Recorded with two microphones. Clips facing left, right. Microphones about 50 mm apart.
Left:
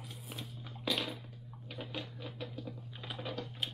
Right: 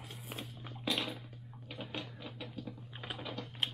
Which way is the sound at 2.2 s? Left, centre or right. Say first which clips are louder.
Left 1 dB; centre.